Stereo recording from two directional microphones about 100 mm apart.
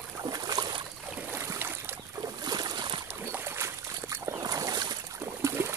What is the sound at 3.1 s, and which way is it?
Boat, 25° right (ahead or behind).